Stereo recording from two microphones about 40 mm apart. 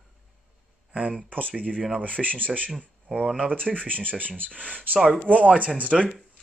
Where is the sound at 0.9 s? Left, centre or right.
Right.